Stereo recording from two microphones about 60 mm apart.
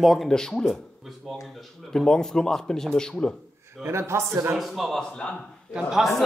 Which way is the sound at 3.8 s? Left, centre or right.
Right.